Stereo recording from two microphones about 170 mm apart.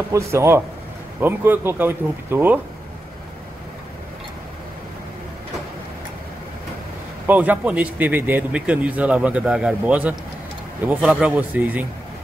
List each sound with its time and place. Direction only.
0.1 s a man's voice: 15° right (ahead or behind)
7.2 s a man's voice: 10° right (ahead or behind)